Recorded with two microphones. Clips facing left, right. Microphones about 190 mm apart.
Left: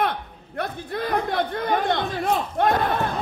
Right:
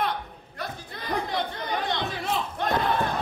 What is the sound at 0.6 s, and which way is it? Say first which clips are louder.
Speech: left 9 dB; 55° left (ahead or behind).